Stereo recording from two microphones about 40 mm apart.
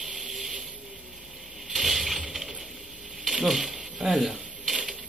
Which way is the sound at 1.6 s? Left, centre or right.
Centre.